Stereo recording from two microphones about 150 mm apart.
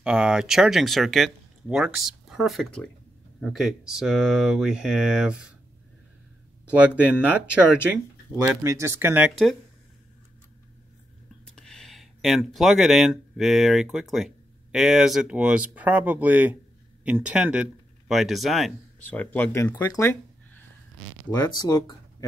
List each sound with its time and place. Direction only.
0.0 s speech: 5° right (ahead or behind)
6.7 s speech: 10° right (ahead or behind)
11.4 s speech: 5° left (ahead or behind)
19.0 s speech: 10° left (ahead or behind)